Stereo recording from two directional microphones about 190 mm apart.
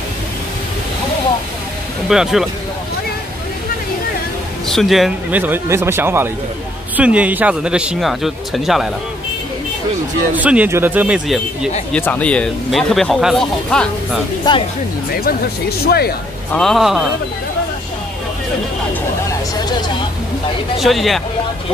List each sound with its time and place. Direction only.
2.0 s speech: centre (ahead or behind)
4.6 s speech: centre (ahead or behind)
10.3 s speech: 10° right (ahead or behind)
15.0 s speech: 50° left (ahead or behind)
16.5 s speech: centre (ahead or behind)
20.7 s speech: centre (ahead or behind)